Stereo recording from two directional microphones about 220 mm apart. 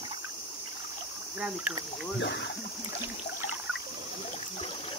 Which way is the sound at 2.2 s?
50° left (ahead or behind).